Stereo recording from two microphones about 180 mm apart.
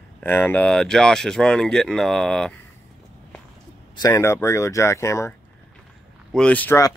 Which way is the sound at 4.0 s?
15° left (ahead or behind).